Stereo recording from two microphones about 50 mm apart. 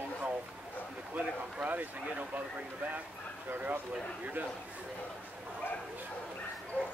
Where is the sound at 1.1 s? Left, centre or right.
Right.